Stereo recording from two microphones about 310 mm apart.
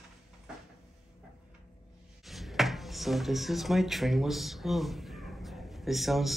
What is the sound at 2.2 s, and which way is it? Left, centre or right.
Drawer open or close, centre.